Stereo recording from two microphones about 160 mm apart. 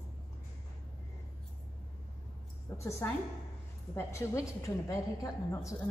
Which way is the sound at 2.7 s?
20° left (ahead or behind).